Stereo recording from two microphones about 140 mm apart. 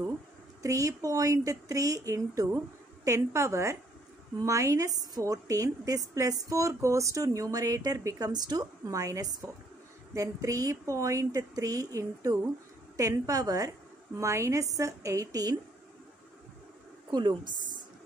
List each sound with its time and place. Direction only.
0.6 s a woman's voice: 25° right (ahead or behind)
17.1 s a woman's voice: 30° right (ahead or behind)